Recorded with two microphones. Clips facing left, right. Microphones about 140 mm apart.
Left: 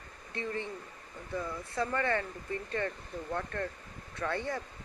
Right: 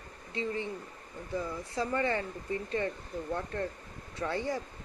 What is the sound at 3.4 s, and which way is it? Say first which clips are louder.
Speech: right 1 dB; 25° right (ahead or behind).